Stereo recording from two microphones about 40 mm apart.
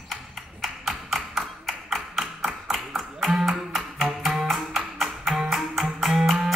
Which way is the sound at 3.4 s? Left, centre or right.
Centre.